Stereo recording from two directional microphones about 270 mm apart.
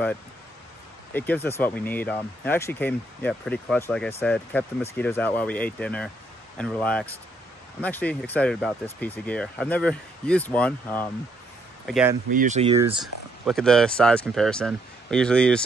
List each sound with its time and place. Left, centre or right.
1.1 s speech: centre
11.9 s speech: centre
12.3 s speech: right
13.0 s speech: centre